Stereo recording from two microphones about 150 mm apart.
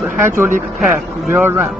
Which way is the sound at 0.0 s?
15° right (ahead or behind).